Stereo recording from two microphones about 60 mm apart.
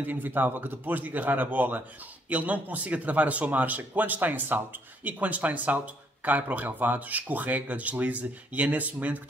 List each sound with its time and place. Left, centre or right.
0.0 s speech: right